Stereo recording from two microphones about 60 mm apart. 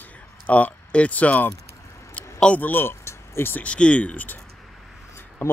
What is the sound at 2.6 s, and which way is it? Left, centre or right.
Speech, left.